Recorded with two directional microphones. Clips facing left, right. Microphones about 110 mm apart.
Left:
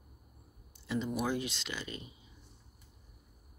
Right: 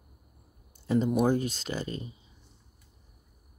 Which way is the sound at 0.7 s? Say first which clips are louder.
Right 9 dB; 45° right (ahead or behind).